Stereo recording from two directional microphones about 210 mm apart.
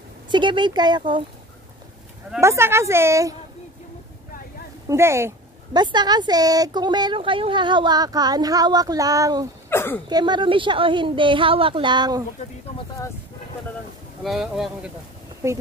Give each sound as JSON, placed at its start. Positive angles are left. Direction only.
{"t": 0.3, "sound": "speech", "side_deg": -20}
{"t": 2.4, "sound": "a woman's voice", "side_deg": -10}
{"t": 4.8, "sound": "speech", "side_deg": -15}
{"t": 9.7, "sound": "a sound", "side_deg": 10}
{"t": 10.0, "sound": "speech", "side_deg": -20}
{"t": 12.7, "sound": "speech", "side_deg": 15}
{"t": 14.2, "sound": "speech", "side_deg": 0}
{"t": 15.4, "sound": "a woman's voice", "side_deg": -15}